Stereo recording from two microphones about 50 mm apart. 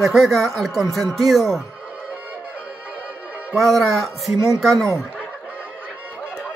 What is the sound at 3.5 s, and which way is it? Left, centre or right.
Speech, centre.